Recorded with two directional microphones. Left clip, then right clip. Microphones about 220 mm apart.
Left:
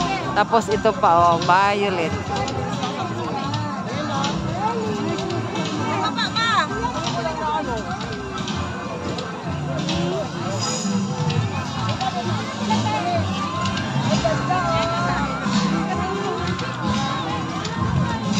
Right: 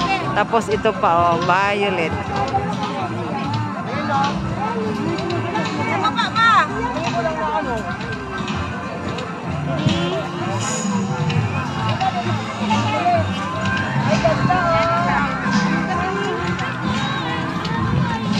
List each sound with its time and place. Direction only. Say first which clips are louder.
0.4 s speech: left 2 dB; 5° left (ahead or behind)
6.0 s music: right 8 dB; 20° right (ahead or behind)